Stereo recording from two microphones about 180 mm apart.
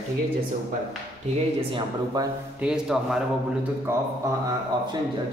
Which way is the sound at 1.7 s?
20° right (ahead or behind).